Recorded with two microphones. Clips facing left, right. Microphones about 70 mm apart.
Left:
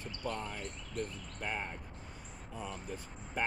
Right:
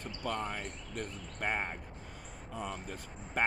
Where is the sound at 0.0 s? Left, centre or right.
Right.